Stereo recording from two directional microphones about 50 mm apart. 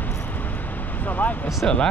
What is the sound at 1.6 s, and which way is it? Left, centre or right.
Speech, centre.